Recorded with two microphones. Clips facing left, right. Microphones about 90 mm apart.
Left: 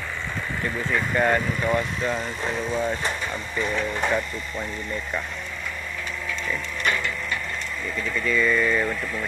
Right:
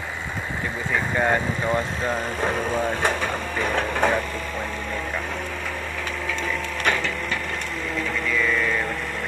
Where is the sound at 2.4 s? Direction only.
50° right (ahead or behind).